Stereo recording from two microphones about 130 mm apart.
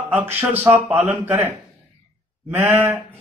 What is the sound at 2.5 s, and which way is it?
Speech, 15° right (ahead or behind).